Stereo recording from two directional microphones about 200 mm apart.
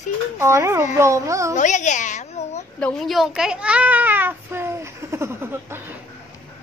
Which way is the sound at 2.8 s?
5° left (ahead or behind).